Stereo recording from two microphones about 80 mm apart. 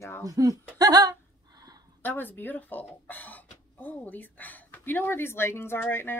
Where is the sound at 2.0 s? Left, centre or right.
Left.